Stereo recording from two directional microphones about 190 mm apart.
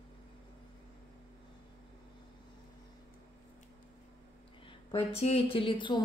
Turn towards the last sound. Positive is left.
turn(degrees=25)  # may be behind; listen again after turning